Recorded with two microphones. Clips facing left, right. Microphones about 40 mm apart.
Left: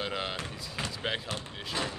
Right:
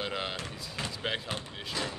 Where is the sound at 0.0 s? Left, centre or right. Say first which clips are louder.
Left 1 dB; centre.